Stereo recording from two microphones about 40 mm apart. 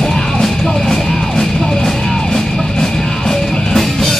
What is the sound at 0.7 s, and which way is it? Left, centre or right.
Music, centre.